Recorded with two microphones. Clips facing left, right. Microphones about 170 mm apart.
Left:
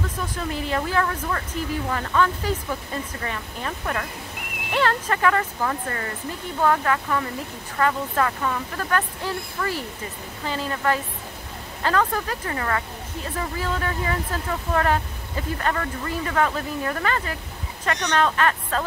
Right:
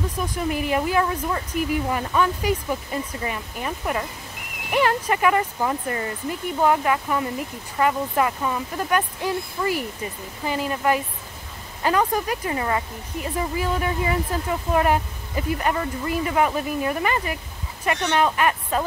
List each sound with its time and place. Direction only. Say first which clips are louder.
0.2 s speech: right 5 dB; 15° right (ahead or behind)